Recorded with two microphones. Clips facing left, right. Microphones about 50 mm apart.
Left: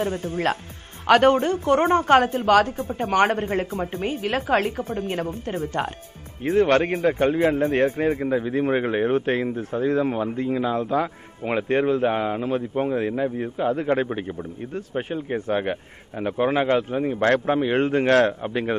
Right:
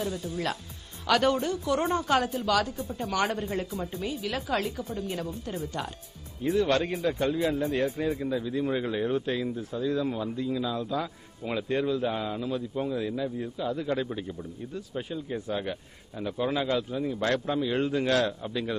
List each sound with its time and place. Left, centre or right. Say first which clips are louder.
0.0 s speech: left 7 dB; left